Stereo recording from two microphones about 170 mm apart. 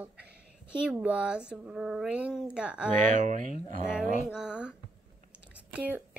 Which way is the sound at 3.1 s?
45° right (ahead or behind).